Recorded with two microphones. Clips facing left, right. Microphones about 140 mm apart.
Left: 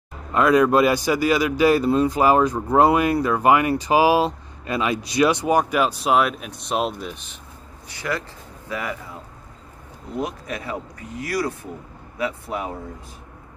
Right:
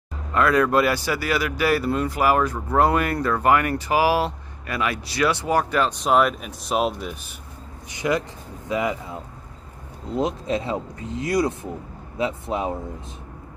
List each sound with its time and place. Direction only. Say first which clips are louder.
0.3 s speech: left 3 dB; 15° left (ahead or behind); by 7.3 s 5° right (ahead or behind)
7.9 s speech: right 4 dB; 20° right (ahead or behind)